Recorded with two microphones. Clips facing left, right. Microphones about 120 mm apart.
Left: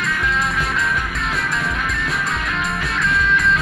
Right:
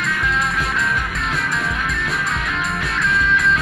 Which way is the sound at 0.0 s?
Centre (ahead or behind).